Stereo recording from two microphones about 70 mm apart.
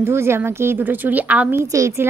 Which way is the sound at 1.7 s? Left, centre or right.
Right.